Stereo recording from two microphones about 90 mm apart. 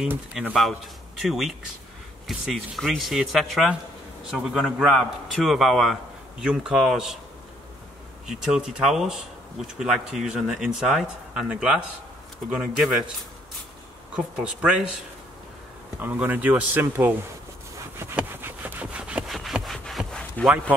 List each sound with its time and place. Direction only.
0.3 s speech: 5° right (ahead or behind)
8.3 s speech: 5° right (ahead or behind)
14.1 s speech: 10° right (ahead or behind)
16.0 s speech: 15° right (ahead or behind)
18.1 s sawing: 20° right (ahead or behind)
19.3 s wood: centre (ahead or behind)